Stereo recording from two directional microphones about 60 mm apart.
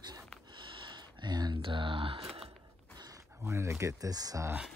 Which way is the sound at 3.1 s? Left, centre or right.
Right.